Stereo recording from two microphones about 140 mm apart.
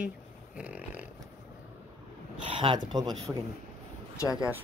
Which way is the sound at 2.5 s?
35° right (ahead or behind).